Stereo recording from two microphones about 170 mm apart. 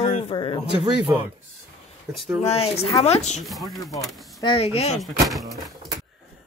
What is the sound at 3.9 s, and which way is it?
Speech, 20° left (ahead or behind).